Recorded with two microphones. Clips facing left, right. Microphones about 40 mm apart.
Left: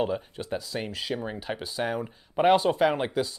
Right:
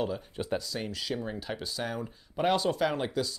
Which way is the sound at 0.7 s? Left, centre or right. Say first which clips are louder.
Left 3 dB; left.